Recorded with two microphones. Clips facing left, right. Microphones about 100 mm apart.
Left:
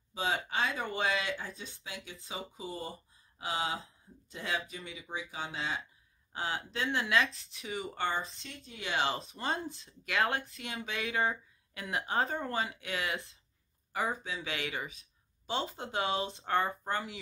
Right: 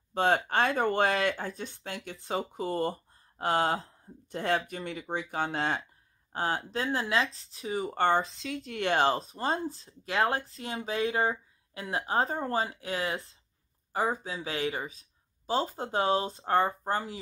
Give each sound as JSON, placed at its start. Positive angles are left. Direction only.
{"t": 0.1, "sound": "speech", "side_deg": -60}
{"t": 6.3, "sound": "speech", "side_deg": -45}
{"t": 7.9, "sound": "speech", "side_deg": -55}
{"t": 8.5, "sound": "speech", "side_deg": -85}